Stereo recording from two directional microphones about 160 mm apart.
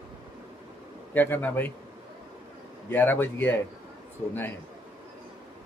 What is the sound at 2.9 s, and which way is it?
Speech, 10° left (ahead or behind).